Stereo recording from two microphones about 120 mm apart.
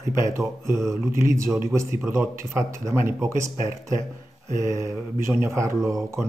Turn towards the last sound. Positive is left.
turn(degrees=-25)  # may be behind; listen again after turning